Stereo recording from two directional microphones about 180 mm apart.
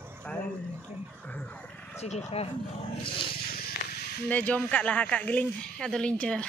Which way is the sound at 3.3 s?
60° left (ahead or behind).